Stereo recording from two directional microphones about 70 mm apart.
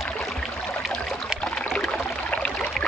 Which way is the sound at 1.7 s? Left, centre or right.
Centre.